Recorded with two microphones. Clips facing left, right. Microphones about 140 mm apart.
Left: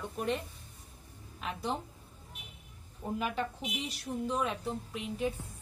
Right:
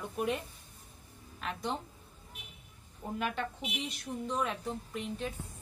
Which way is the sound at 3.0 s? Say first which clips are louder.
Left 1 dB; 5° left (ahead or behind).